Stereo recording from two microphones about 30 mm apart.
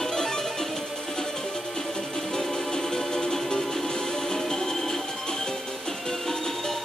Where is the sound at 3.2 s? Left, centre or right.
Centre.